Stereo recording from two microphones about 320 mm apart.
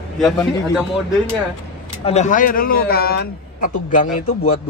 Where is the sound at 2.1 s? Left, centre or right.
Left.